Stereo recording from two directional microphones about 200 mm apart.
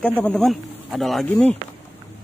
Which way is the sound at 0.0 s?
5° left (ahead or behind).